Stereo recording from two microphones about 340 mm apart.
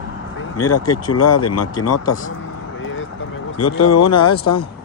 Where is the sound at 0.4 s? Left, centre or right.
Left.